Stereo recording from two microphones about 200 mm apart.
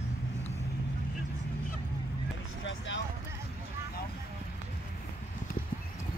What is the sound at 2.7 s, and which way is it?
Vehicle, 65° left (ahead or behind).